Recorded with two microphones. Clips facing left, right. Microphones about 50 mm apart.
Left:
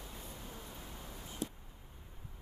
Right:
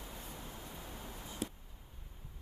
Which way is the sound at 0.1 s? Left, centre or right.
Centre.